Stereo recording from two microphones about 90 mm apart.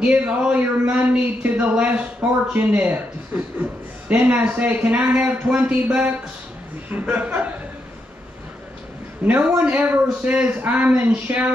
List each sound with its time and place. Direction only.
0.3 s a man's voice: 10° right (ahead or behind)
9.2 s a woman's voice: 20° right (ahead or behind)